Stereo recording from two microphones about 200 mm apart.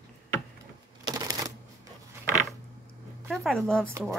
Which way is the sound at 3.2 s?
Centre (ahead or behind).